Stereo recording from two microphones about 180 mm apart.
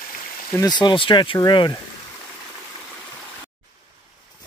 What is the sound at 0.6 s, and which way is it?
Speech, 25° left (ahead or behind).